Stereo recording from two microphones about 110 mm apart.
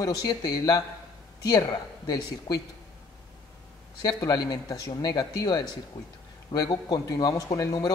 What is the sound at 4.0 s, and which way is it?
Speech, 35° left (ahead or behind).